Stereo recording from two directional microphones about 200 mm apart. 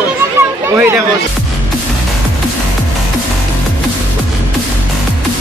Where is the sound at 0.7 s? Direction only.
10° right (ahead or behind).